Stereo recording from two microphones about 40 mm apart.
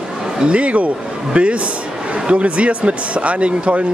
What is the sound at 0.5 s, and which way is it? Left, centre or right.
Speech, right.